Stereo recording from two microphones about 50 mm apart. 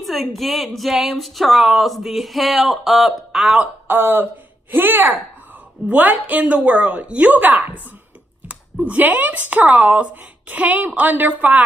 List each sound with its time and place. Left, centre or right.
0.0 s a woman's voice: centre
3.8 s a woman's voice: right